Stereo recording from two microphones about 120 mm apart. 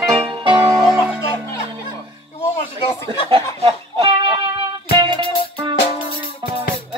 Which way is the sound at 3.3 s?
45° right (ahead or behind).